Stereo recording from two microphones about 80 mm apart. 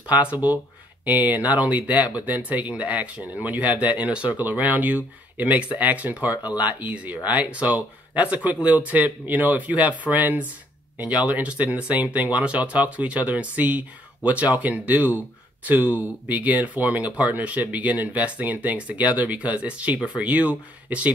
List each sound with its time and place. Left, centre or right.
0.0 s speech: centre